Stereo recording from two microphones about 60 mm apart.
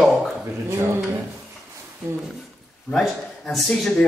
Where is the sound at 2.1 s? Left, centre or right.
Right.